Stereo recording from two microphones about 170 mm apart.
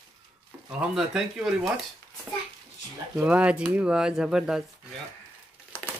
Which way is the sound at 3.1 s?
10° right (ahead or behind).